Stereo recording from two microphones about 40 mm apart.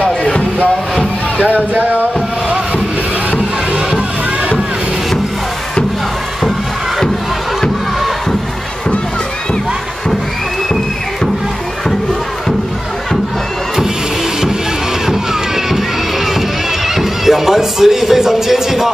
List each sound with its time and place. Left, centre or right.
0.0 s music: left
1.4 s a sound: right
15.0 s music: centre